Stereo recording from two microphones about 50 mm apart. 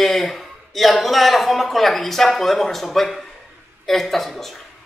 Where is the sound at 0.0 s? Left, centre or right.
Centre.